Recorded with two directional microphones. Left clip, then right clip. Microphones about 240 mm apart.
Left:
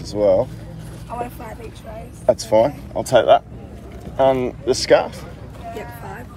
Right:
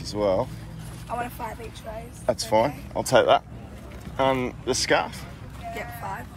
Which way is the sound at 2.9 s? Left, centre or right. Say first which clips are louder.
Left 3 dB; right.